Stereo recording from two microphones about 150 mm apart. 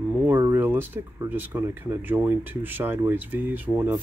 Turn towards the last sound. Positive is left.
turn(degrees=-10)  # may be behind; listen again after turning